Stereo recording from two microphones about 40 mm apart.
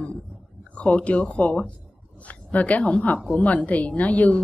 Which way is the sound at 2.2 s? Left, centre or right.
Left.